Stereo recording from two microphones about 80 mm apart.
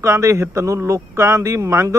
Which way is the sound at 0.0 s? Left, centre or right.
Right.